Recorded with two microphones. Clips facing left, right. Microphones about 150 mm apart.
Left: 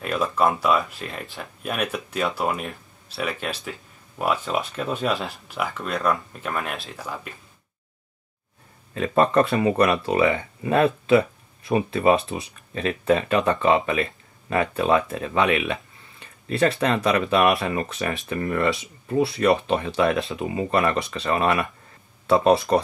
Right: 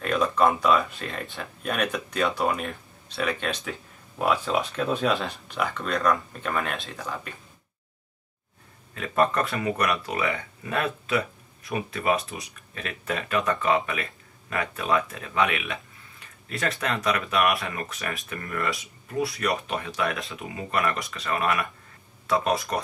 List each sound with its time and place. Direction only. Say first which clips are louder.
0.0 s speech: even; 5° left (ahead or behind)
8.9 s speech: left 5 dB; 30° left (ahead or behind)